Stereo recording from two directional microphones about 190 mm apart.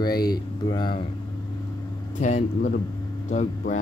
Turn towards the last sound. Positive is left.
turn(degrees=40)  # may be behind; listen again after turning